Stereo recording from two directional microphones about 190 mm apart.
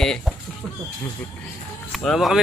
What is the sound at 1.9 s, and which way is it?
Speech, centre (ahead or behind).